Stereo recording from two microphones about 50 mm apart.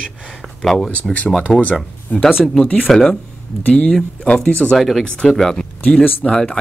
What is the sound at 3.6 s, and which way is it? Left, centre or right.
Speech, left.